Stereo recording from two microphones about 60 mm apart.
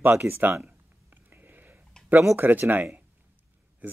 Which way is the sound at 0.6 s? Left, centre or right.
Right.